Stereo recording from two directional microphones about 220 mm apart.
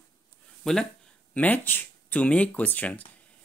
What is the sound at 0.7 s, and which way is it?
Speech, centre (ahead or behind).